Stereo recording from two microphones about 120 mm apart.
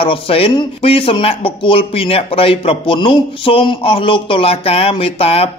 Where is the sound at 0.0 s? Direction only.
50° left (ahead or behind).